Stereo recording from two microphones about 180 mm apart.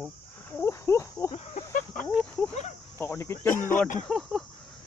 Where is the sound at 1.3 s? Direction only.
35° left (ahead or behind).